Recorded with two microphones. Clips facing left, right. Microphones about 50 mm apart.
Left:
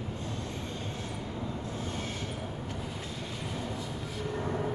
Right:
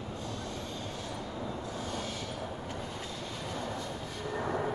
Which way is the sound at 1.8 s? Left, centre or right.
Left.